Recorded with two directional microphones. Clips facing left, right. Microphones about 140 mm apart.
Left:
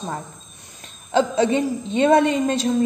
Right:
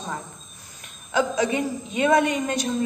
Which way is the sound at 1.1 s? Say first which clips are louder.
Left 4 dB; 30° left (ahead or behind).